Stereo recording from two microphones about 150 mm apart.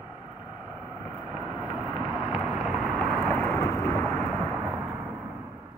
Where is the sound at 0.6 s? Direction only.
5° right (ahead or behind); by 3.1 s 10° left (ahead or behind).